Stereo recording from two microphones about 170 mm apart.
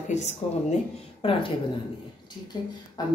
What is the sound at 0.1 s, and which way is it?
Speech, 40° left (ahead or behind).